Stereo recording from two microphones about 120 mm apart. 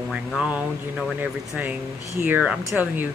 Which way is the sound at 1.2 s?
15° right (ahead or behind).